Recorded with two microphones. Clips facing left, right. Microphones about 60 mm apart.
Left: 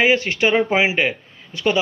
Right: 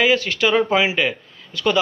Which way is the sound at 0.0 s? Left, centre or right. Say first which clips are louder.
Left 1 dB; left.